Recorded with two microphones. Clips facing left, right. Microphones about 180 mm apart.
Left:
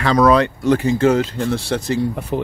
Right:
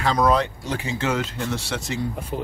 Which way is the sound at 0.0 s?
75° left (ahead or behind).